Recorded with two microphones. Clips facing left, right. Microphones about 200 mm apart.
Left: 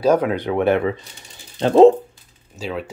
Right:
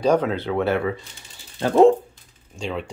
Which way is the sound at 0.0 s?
10° left (ahead or behind).